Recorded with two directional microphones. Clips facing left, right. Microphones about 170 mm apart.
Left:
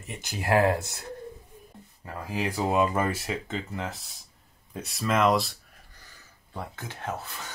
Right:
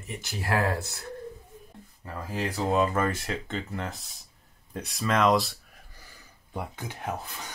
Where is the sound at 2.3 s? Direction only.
10° left (ahead or behind).